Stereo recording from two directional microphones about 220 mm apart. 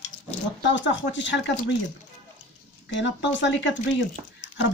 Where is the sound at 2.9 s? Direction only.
55° left (ahead or behind).